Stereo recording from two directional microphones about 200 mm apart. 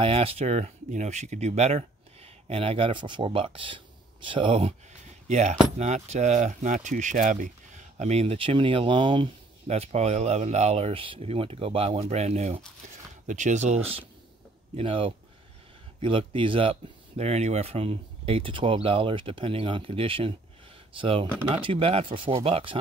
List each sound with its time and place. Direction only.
0.0 s speech: 30° right (ahead or behind)